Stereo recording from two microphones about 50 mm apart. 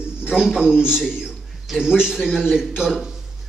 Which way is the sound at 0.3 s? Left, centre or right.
Centre.